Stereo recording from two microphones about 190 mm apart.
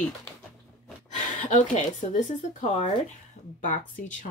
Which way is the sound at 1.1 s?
40° left (ahead or behind).